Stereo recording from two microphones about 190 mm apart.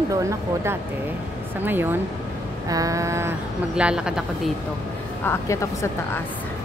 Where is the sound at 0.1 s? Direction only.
15° right (ahead or behind).